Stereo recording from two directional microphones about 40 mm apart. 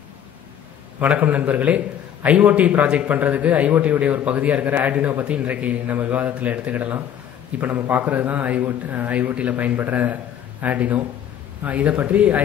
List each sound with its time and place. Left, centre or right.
1.0 s a man's voice: right